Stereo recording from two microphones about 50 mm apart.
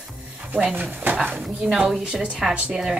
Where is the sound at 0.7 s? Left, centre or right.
Right.